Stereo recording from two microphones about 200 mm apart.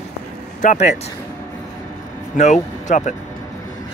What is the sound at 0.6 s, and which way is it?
Speech, 35° left (ahead or behind).